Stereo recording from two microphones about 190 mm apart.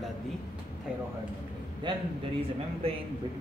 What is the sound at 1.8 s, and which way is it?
Speech, 25° right (ahead or behind).